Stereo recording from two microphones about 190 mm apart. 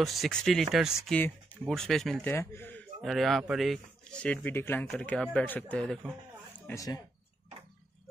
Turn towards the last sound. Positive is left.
turn(degrees=15)  # may be behind; listen again after turning